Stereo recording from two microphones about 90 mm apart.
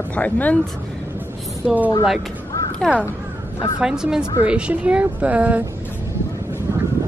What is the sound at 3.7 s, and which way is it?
A woman's voice, 10° right (ahead or behind).